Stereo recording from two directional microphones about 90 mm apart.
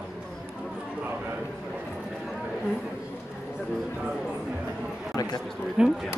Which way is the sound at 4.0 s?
10° right (ahead or behind).